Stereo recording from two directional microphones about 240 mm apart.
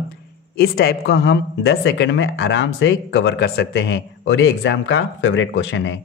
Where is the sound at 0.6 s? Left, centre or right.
Left.